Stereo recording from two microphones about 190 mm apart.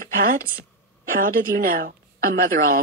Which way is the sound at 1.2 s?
50° right (ahead or behind).